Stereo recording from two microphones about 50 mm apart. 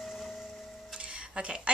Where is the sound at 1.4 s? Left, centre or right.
Right.